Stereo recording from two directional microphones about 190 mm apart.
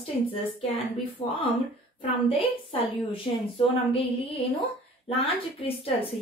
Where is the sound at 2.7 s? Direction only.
30° left (ahead or behind).